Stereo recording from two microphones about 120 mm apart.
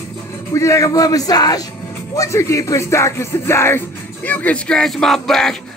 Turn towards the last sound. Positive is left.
turn(degrees=5)  # may be behind; listen again after turning